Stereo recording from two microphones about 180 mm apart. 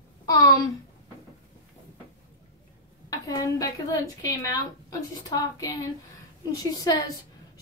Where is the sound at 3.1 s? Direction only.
20° left (ahead or behind).